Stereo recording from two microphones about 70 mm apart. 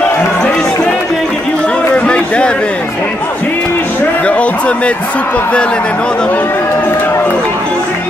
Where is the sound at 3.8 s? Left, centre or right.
Left.